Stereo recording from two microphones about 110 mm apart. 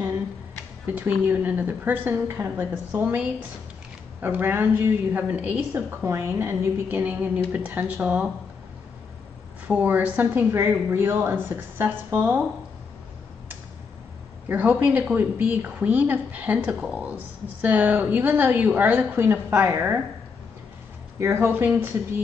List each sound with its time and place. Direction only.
0.9 s a woman's voice: 15° right (ahead or behind)
9.7 s a woman's voice: 15° right (ahead or behind)
14.5 s a woman's voice: 15° right (ahead or behind)
21.2 s a woman's voice: 25° right (ahead or behind)